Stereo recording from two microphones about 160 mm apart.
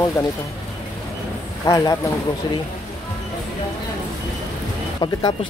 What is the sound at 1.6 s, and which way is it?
Speech, 25° left (ahead or behind).